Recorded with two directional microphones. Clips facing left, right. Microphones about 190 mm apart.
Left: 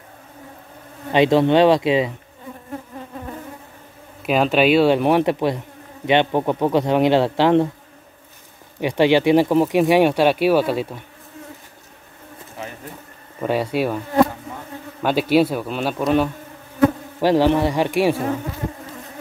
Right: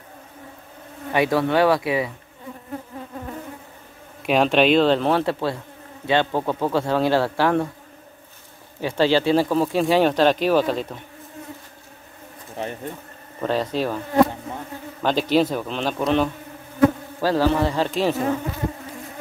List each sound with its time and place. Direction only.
1.1 s insect: 25° left (ahead or behind)
4.2 s speech: centre (ahead or behind); by 5.6 s 20° left (ahead or behind)
6.0 s insect: 20° left (ahead or behind)
8.8 s speech: 15° left (ahead or behind)
13.4 s speech: 10° left (ahead or behind)
15.0 s speech: 5° left (ahead or behind)
17.2 s speech: 20° left (ahead or behind)